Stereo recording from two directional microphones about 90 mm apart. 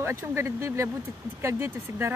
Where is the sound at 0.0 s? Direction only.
25° right (ahead or behind).